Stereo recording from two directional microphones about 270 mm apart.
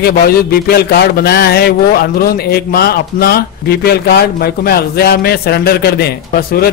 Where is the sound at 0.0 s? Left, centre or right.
Left.